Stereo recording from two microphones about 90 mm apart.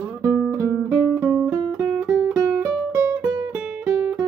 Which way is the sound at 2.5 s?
25° right (ahead or behind).